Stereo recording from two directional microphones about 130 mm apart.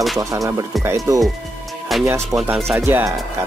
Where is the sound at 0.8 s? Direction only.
25° right (ahead or behind).